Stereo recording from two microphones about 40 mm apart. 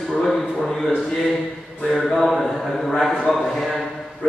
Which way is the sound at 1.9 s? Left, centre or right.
Centre.